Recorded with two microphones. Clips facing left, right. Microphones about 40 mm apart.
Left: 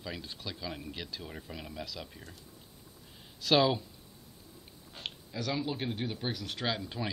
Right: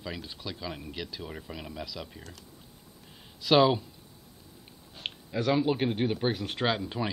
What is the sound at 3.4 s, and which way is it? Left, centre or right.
Speech, centre.